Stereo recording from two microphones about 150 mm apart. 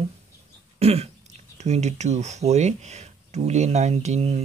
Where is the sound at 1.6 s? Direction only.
50° right (ahead or behind).